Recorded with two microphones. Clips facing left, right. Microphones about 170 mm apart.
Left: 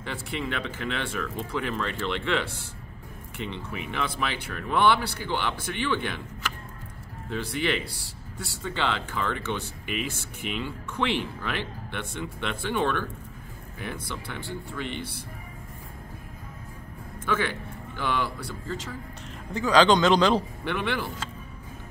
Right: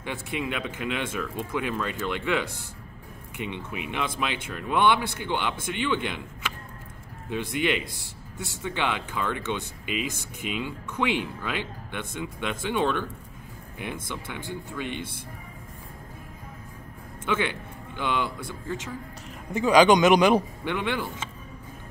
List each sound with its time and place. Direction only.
0.0 s speech: 10° right (ahead or behind)
7.3 s speech: 15° right (ahead or behind)
14.1 s speech: 15° right (ahead or behind)
17.5 s speech: 20° right (ahead or behind)